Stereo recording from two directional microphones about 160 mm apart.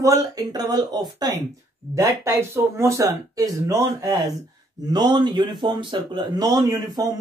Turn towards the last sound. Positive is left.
turn(degrees=-20)  # may be behind; listen again after turning